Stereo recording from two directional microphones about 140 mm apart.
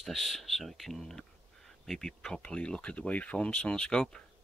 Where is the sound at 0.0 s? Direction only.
Centre (ahead or behind).